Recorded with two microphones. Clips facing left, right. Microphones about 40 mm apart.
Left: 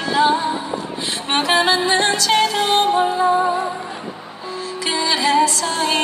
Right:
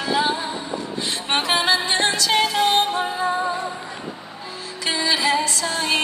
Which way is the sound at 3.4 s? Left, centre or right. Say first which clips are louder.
Left 5 dB; centre.